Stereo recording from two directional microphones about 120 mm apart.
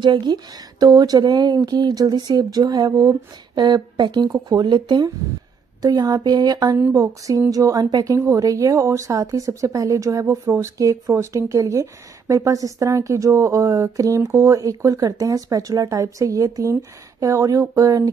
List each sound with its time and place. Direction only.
0.0 s a woman's voice: 40° right (ahead or behind)